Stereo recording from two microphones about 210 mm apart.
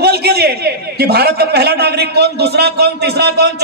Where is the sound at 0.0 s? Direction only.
50° right (ahead or behind).